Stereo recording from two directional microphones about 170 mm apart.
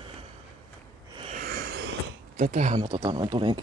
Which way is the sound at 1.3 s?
60° right (ahead or behind).